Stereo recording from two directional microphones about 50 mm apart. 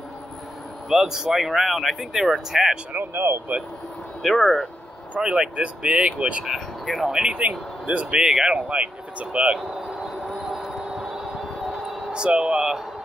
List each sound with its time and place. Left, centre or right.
0.8 s speech: centre
2.9 s speech: right
4.2 s speech: centre
5.2 s speech: centre
6.4 s speech: centre
7.1 s speech: centre
8.2 s speech: centre
8.6 s speech: right
9.7 s a sound: centre
10.0 s music: centre
12.1 s speech: centre